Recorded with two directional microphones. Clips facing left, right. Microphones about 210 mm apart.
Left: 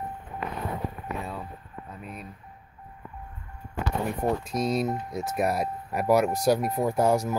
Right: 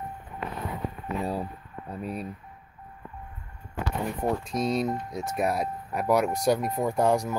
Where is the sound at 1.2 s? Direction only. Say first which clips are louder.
Right 6 dB; 35° right (ahead or behind).